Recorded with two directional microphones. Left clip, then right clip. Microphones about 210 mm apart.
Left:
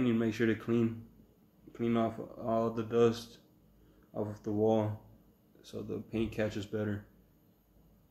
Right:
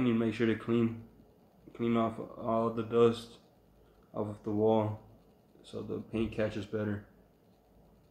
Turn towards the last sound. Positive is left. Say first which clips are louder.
# right 1 dB
turn(degrees=25)  # may be behind; listen again after turning